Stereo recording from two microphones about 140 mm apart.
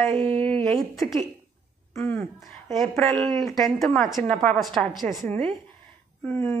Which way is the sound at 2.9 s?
5° left (ahead or behind).